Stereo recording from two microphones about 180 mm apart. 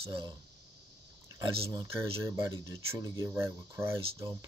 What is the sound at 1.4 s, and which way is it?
Speech, 25° right (ahead or behind).